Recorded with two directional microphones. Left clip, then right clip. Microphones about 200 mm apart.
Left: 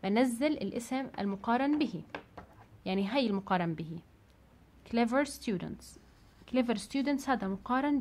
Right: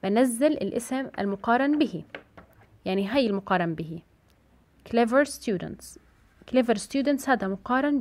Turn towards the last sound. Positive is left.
turn(degrees=-25)  # may be behind; listen again after turning